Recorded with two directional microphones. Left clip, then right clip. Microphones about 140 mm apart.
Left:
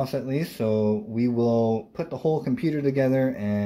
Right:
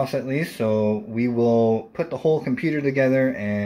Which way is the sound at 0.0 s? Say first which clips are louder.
Right 3 dB; centre (ahead or behind).